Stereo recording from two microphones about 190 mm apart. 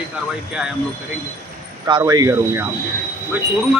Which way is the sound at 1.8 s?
20° right (ahead or behind).